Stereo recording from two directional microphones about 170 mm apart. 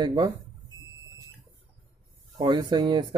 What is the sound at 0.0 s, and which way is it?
Speech, 25° right (ahead or behind).